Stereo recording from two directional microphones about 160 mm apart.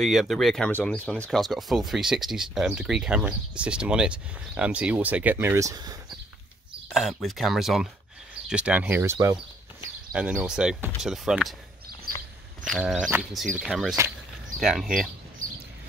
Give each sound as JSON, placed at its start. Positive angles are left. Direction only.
{"t": 0.0, "sound": "speech", "side_deg": 0}
{"t": 6.9, "sound": "speech", "side_deg": 0}
{"t": 10.1, "sound": "speech", "side_deg": -5}
{"t": 12.6, "sound": "speech", "side_deg": 0}
{"t": 13.1, "sound": "speech", "side_deg": -15}
{"t": 13.6, "sound": "speech", "side_deg": -5}